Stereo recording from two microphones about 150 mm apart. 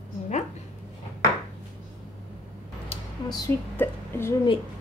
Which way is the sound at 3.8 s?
15° left (ahead or behind).